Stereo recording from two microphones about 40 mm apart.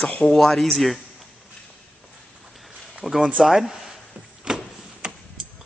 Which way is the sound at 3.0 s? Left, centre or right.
Centre.